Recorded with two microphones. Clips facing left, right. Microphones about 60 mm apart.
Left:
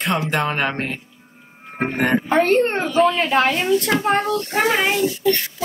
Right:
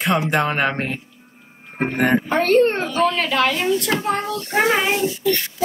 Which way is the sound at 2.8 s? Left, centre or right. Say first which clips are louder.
Left 2 dB; centre.